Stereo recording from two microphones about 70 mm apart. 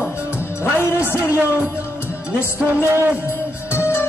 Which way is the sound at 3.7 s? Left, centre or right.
Left.